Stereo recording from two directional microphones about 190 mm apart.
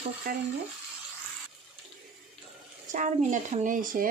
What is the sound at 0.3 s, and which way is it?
Speech, 45° right (ahead or behind).